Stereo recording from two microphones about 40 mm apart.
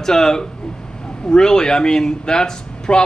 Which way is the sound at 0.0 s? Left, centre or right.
Centre.